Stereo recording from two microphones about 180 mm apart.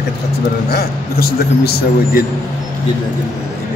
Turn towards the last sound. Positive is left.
turn(degrees=60)  # may be behind; listen again after turning